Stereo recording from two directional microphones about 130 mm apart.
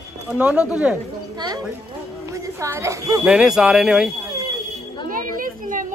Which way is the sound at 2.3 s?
25° right (ahead or behind).